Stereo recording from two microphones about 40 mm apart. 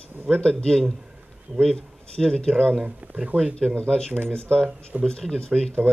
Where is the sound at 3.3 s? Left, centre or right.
Left.